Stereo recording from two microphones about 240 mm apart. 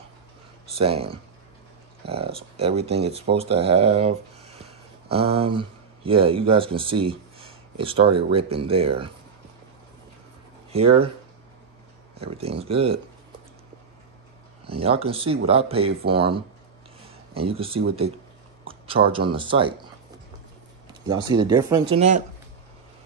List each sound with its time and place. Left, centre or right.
0.7 s speech: right
10.7 s speech: right
12.4 s speech: right
14.7 s speech: right
18.7 s a sound: right
19.1 s speech: right
21.1 s speech: centre